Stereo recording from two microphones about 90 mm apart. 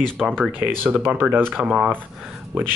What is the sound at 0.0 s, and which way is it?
Speech, 5° left (ahead or behind).